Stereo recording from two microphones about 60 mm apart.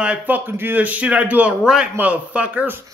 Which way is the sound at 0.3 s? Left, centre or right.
Right.